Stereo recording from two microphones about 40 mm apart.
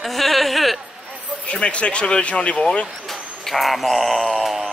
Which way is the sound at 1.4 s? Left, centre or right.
Left.